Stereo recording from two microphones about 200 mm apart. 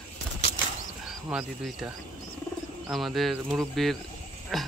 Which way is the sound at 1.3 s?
Centre (ahead or behind).